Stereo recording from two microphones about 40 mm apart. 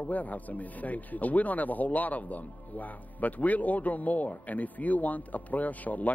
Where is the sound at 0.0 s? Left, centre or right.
Left.